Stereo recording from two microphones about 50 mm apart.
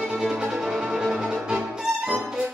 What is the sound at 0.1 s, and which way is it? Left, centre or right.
Violin, centre.